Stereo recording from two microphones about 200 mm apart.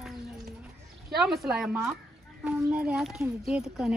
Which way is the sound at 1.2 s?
Centre (ahead or behind).